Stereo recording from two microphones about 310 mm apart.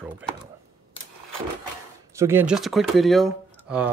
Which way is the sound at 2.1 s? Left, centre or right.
Centre.